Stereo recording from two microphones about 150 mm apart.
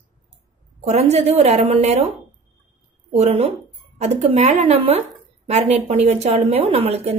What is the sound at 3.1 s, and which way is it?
A woman's voice, 45° right (ahead or behind).